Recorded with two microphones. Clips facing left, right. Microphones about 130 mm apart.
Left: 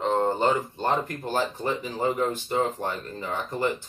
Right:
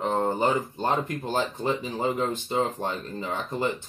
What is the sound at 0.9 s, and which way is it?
Speech, 20° right (ahead or behind).